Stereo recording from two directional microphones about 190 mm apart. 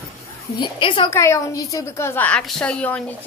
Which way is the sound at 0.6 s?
25° left (ahead or behind).